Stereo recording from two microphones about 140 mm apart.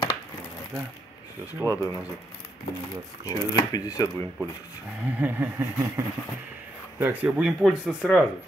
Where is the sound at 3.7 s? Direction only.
25° left (ahead or behind).